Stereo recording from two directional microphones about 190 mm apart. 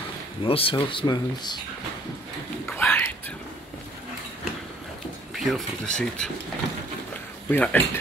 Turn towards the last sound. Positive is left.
turn(degrees=10)  # may be behind; listen again after turning